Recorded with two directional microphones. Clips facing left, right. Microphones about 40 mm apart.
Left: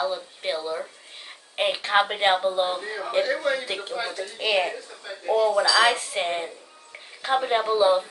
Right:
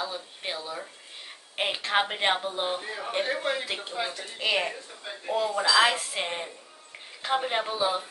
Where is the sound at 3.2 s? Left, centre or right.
Right.